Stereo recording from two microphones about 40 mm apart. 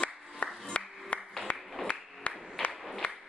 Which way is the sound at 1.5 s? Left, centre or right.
Left.